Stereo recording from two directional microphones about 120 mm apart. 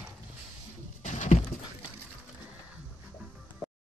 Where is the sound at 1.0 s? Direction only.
85° left.